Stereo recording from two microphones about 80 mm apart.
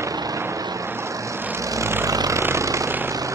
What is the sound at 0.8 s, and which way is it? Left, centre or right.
Vehicle, right.